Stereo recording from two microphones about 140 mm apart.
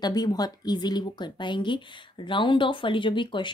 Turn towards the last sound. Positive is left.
turn(degrees=35)  # may be behind; listen again after turning